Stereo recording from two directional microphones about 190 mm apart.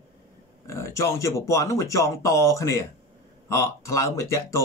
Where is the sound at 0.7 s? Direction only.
15° left (ahead or behind).